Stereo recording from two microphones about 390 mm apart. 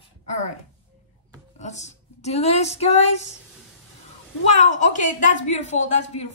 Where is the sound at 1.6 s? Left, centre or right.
Centre.